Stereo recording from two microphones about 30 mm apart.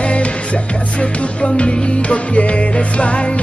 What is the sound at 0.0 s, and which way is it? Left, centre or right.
Music, left.